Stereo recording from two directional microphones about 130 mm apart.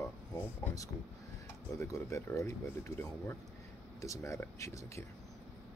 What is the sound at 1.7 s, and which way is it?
Speech, 20° left (ahead or behind).